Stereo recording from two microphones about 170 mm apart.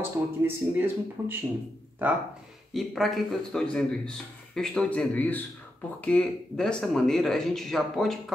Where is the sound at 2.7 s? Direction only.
Centre (ahead or behind).